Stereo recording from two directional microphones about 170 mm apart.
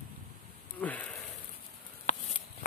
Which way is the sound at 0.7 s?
10° left (ahead or behind).